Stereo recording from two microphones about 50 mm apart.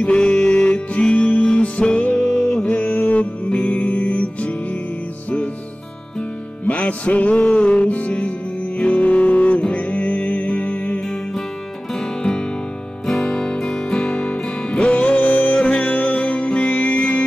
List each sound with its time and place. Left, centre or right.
0.0 s music: left
2.1 s music: centre
2.6 s music: left
6.6 s music: left
12.2 s music: centre
13.3 s music: centre